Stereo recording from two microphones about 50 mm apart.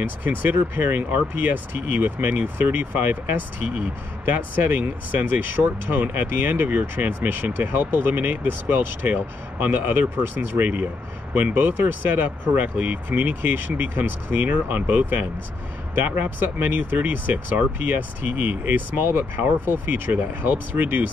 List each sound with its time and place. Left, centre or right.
0.0 s speech: right